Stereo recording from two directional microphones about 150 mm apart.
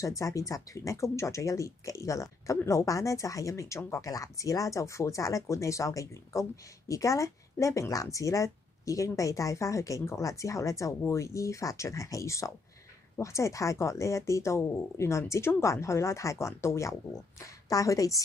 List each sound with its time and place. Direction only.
0.0 s speech: 20° left (ahead or behind)